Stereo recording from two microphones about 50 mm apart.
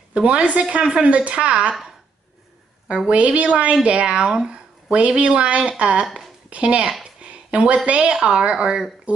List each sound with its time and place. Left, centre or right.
0.1 s speech: right
3.1 s speech: right
4.3 s a sound: centre
4.9 s speech: right
7.2 s a sound: right
7.8 s speech: right